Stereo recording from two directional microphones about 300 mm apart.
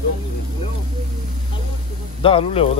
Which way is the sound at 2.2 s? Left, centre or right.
Centre.